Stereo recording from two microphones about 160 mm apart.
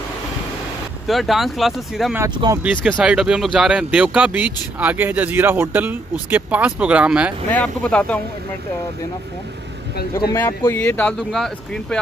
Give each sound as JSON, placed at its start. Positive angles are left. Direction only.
{"t": 1.0, "sound": "speech", "side_deg": 0}
{"t": 2.3, "sound": "speech", "side_deg": -25}
{"t": 2.6, "sound": "speech", "side_deg": -10}
{"t": 7.4, "sound": "speech", "side_deg": 10}
{"t": 10.3, "sound": "speech", "side_deg": 15}